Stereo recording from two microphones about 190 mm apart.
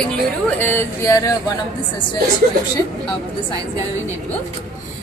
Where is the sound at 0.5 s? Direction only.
10° left (ahead or behind).